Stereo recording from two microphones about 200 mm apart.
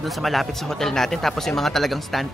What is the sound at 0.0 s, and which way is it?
Speech, centre (ahead or behind).